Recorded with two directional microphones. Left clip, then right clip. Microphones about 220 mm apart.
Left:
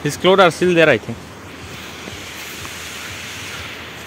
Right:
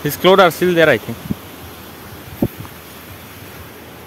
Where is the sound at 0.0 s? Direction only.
10° right (ahead or behind).